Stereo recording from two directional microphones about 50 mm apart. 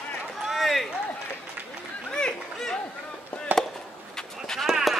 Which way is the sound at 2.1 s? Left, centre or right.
Centre.